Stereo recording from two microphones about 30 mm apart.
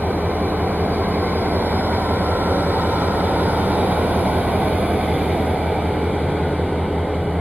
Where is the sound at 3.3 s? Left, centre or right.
Right.